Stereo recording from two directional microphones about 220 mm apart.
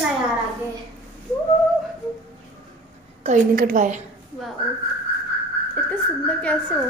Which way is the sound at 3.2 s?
35° right (ahead or behind).